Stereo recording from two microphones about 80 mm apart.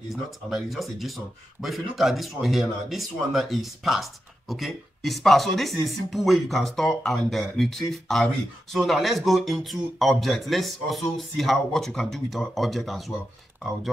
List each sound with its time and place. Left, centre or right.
0.1 s speech: centre